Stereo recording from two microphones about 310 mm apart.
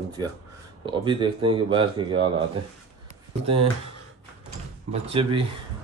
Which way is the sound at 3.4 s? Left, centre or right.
Centre.